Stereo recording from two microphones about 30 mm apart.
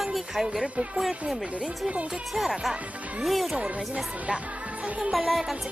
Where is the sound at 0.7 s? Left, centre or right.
Right.